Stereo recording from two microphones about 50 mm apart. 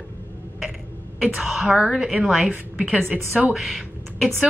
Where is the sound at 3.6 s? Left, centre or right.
Centre.